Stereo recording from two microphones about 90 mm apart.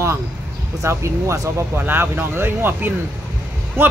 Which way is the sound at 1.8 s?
25° right (ahead or behind).